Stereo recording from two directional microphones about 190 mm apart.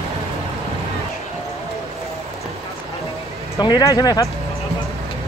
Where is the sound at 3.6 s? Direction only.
20° left (ahead or behind).